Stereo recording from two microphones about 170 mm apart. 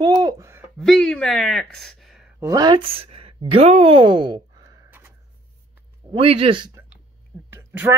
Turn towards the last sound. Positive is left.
turn(degrees=-10)  # may be behind; listen again after turning